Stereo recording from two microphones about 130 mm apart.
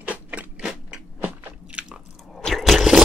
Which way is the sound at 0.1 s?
10° right (ahead or behind).